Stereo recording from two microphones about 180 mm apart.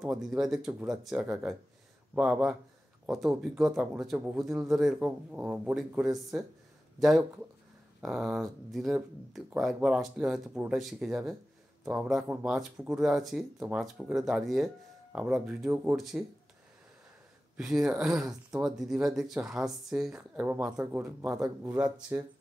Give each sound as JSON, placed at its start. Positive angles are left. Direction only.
{"t": 0.0, "sound": "speech", "side_deg": -5}
{"t": 17.6, "sound": "speech", "side_deg": 0}